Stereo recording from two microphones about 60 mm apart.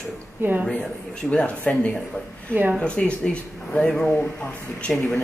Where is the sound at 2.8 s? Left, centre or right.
Centre.